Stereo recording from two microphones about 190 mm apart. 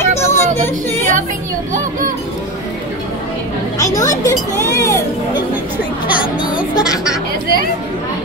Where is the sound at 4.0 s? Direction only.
15° left (ahead or behind).